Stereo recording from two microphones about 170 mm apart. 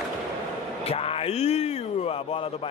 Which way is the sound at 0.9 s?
35° left (ahead or behind).